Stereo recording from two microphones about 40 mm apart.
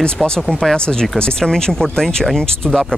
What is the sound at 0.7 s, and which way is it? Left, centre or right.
Speech, left.